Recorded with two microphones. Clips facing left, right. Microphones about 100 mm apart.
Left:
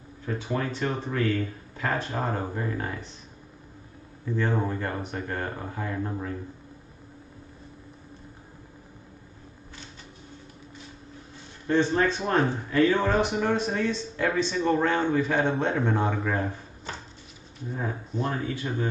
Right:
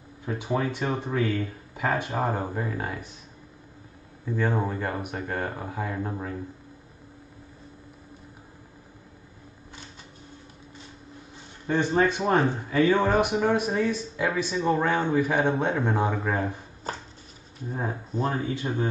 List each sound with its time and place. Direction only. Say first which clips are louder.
0.2 s speech: right 2 dB; 15° right (ahead or behind)
4.4 s speech: right 1 dB; 10° right (ahead or behind)
11.6 s speech: even; 15° right (ahead or behind)
17.7 s speech: right 1 dB; 35° right (ahead or behind)
18.4 s speech: right 2 dB; 20° right (ahead or behind)